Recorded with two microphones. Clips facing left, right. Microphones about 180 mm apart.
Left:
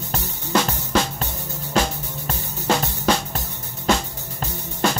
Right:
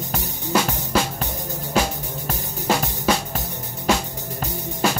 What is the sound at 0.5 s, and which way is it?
Music, 10° right (ahead or behind).